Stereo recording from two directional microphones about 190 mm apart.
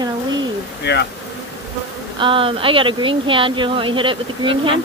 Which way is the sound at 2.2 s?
25° right (ahead or behind).